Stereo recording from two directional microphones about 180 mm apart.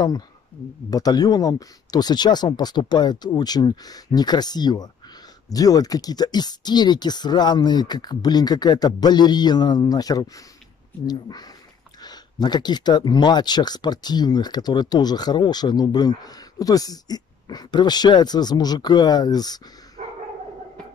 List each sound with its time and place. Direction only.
0.8 s speech: 20° left (ahead or behind)
20.0 s dog: 45° right (ahead or behind)